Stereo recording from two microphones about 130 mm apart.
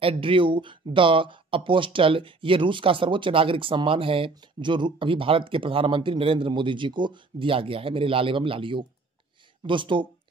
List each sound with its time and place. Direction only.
0.0 s speech: 45° right (ahead or behind)